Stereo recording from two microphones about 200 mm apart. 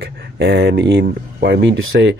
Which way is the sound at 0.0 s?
55° right (ahead or behind).